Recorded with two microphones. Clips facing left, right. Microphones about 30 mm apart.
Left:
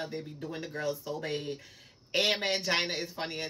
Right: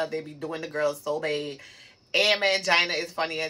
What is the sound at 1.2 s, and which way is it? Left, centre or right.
Speech, right.